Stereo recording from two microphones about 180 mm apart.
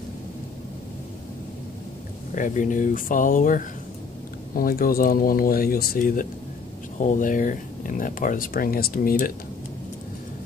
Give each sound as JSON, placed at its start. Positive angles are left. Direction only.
{"t": 2.3, "sound": "speech", "side_deg": 45}